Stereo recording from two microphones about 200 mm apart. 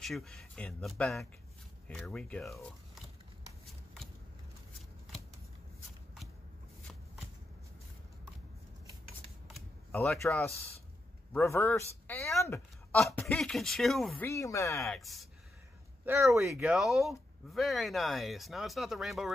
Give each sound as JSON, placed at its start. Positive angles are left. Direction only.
{"t": 0.0, "sound": "speech", "side_deg": 0}
{"t": 3.6, "sound": "shuffling cards", "side_deg": 0}
{"t": 9.9, "sound": "speech", "side_deg": 5}
{"t": 12.4, "sound": "a sound", "side_deg": 15}
{"t": 13.0, "sound": "speech", "side_deg": 5}
{"t": 14.2, "sound": "speech", "side_deg": 15}
{"t": 14.8, "sound": "speech", "side_deg": 0}
{"t": 16.1, "sound": "speech", "side_deg": -15}
{"t": 16.5, "sound": "speech", "side_deg": -5}